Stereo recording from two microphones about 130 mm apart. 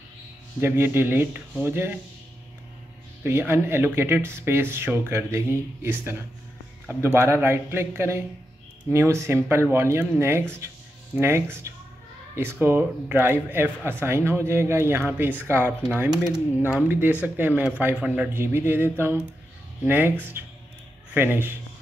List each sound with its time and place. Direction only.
0.6 s speech: 20° right (ahead or behind)
3.3 s speech: 20° right (ahead or behind)
7.2 s speech: 15° right (ahead or behind)